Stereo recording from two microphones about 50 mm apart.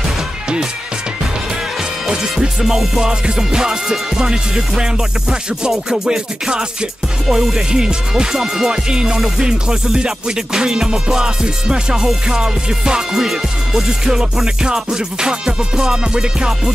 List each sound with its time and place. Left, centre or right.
2.0 s music: centre